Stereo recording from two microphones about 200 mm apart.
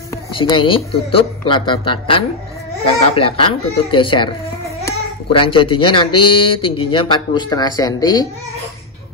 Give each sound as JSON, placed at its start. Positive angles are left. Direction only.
{"t": 0.3, "sound": "speech", "side_deg": 25}